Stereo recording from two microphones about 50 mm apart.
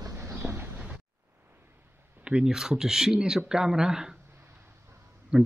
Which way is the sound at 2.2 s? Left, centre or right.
Centre.